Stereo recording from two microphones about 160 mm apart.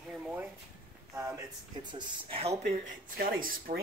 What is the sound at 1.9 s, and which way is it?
Speech, 30° right (ahead or behind).